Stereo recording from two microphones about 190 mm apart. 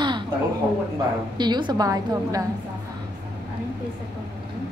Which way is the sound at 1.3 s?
25° right (ahead or behind).